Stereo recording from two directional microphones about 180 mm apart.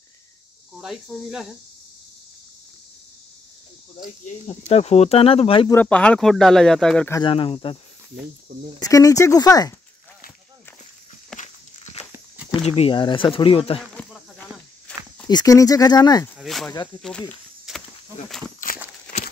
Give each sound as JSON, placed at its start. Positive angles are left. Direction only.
{"t": 0.7, "sound": "speech", "side_deg": 0}
{"t": 4.0, "sound": "speech", "side_deg": 40}
{"t": 5.7, "sound": "speech", "side_deg": 10}
{"t": 7.2, "sound": "speech", "side_deg": 30}
{"t": 8.8, "sound": "speech", "side_deg": 20}
{"t": 11.3, "sound": "walk", "side_deg": 40}
{"t": 12.1, "sound": "a sound", "side_deg": -10}
{"t": 12.5, "sound": "speech", "side_deg": 35}
{"t": 13.7, "sound": "walk", "side_deg": 0}
{"t": 15.2, "sound": "speech", "side_deg": 20}
{"t": 16.3, "sound": "speech", "side_deg": 0}
{"t": 16.7, "sound": "speech", "side_deg": 25}
{"t": 17.7, "sound": "a sound", "side_deg": -5}